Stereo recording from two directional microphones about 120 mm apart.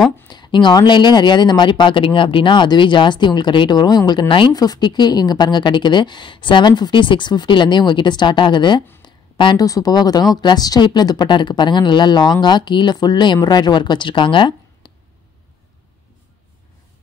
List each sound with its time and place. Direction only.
0.3 s speech: 40° left (ahead or behind)